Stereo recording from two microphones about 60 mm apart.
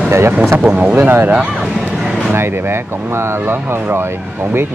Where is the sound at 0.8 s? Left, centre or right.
Right.